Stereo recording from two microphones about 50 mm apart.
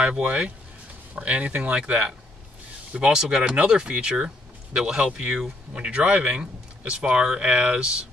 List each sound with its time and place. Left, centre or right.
0.2 s speech: right